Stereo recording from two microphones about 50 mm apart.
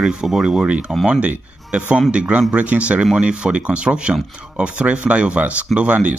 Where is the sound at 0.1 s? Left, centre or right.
Centre.